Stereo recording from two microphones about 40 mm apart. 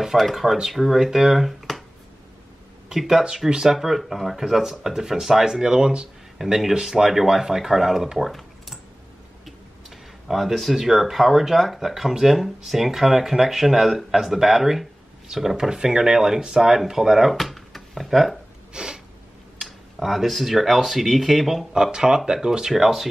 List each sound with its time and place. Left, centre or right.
0.0 s speech: centre
3.0 s speech: centre
3.3 s speech: centre
3.7 s speech: centre
8.2 s computer keyboard: centre
9.8 s a sound: centre
10.8 s speech: centre
17.4 s a sound: centre
18.7 s snort: right
19.6 s speech: centre
21.9 s speech: centre